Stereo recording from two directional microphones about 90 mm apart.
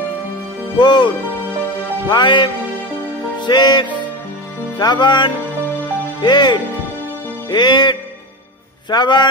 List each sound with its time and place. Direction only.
0.7 s speech: 55° left (ahead or behind)
3.3 s music: 55° left (ahead or behind)
4.7 s speech: 55° left (ahead or behind)
7.4 s music: 50° left (ahead or behind)
8.9 s speech: 55° left (ahead or behind)